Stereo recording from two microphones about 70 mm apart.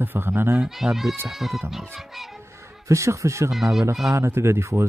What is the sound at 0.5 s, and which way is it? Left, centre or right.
Speech, centre.